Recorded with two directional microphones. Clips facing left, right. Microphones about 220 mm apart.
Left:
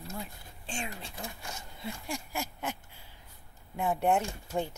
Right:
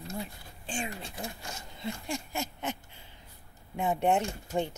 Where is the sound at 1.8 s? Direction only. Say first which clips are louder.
Right 3 dB; 10° left (ahead or behind).